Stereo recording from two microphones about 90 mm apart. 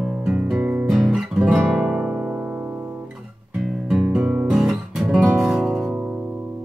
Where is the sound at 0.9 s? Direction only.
5° right (ahead or behind).